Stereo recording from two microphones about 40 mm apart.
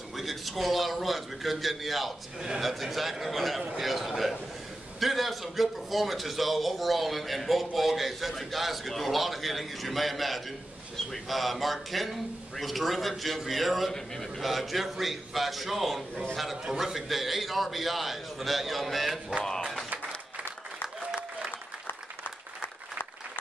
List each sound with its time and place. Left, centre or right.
0.1 s a man's voice: centre
13.9 s a man's voice: centre
14.4 s a man's voice: centre
19.4 s a man's voice: centre